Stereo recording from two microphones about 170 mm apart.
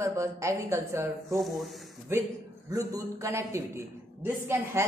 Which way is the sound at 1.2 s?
Centre (ahead or behind).